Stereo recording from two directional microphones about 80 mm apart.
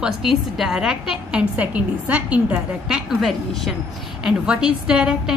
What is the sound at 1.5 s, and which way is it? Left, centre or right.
Speech, centre.